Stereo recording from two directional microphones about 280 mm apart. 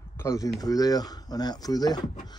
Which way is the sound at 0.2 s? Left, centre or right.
Centre.